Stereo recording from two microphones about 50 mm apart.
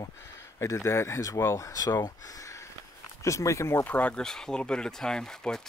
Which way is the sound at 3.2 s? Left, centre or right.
Left.